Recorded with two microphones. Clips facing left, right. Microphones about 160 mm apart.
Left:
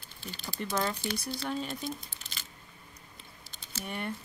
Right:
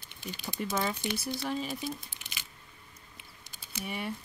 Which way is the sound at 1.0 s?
20° right (ahead or behind).